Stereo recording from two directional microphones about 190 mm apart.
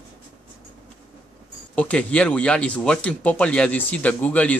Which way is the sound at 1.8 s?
5° left (ahead or behind).